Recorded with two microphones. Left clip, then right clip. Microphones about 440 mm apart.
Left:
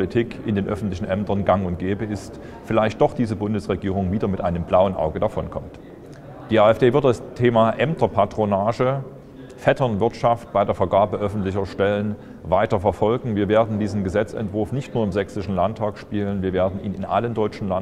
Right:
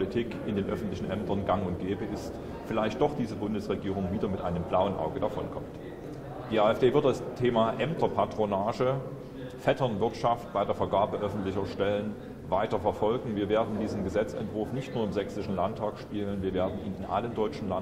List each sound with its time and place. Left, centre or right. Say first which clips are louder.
0.0 s a man's voice: left 8 dB; left
6.5 s a man's voice: left 8 dB; left